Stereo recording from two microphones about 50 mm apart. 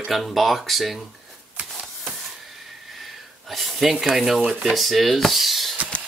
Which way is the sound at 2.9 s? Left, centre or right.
Centre.